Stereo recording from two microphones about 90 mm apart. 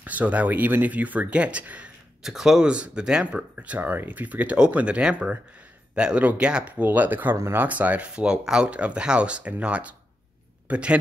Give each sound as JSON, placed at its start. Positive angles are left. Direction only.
{"t": 0.0, "sound": "speech", "side_deg": -15}
{"t": 2.2, "sound": "speech", "side_deg": -5}
{"t": 7.6, "sound": "speech", "side_deg": -15}